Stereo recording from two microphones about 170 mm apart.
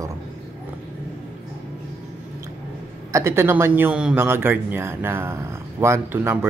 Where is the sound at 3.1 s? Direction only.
15° right (ahead or behind).